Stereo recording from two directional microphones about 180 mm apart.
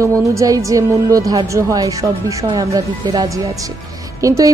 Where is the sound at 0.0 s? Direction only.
15° right (ahead or behind).